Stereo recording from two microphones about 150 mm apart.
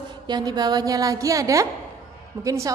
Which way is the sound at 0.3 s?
25° right (ahead or behind).